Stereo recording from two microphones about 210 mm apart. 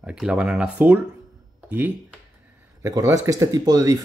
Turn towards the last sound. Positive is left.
turn(degrees=-15)  # may be behind; listen again after turning